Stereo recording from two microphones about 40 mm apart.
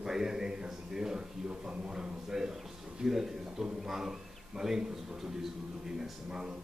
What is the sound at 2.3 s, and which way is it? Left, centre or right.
Speech, centre.